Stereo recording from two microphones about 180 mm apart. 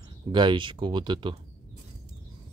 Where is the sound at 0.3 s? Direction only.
25° right (ahead or behind).